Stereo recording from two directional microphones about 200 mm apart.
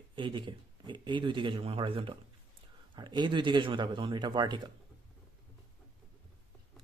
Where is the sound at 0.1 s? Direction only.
25° right (ahead or behind).